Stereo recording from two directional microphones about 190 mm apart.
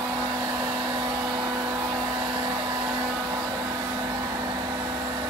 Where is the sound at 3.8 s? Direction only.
15° right (ahead or behind).